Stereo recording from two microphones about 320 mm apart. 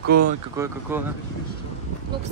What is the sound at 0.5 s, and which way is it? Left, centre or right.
Speech, centre.